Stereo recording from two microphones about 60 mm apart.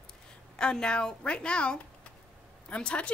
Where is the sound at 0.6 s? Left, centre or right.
Centre.